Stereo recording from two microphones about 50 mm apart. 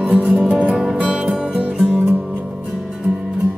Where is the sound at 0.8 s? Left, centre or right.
Centre.